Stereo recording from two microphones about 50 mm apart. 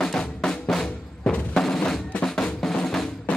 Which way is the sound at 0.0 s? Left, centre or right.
Centre.